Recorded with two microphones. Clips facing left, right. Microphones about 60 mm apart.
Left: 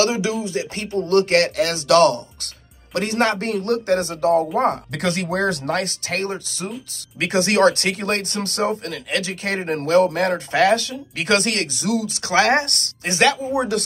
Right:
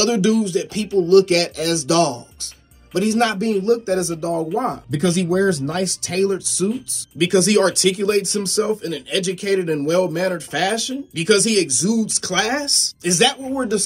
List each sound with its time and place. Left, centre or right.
0.0 s speech: left
1.6 s speech: left
12.4 s speech: left
13.5 s speech: left